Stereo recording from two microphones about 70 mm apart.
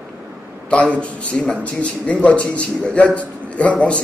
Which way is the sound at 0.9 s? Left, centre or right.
Centre.